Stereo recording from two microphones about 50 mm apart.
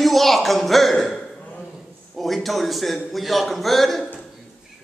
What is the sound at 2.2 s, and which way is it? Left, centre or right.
A man's voice, centre.